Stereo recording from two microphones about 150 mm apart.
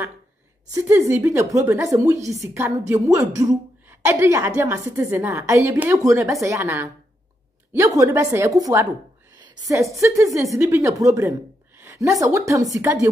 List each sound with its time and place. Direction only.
0.7 s a woman's voice: 20° right (ahead or behind)